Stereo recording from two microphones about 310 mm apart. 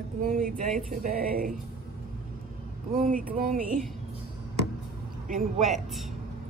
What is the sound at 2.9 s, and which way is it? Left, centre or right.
Speech, right.